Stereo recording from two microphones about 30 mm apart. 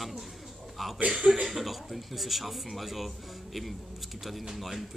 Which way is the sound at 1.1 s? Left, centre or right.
Centre.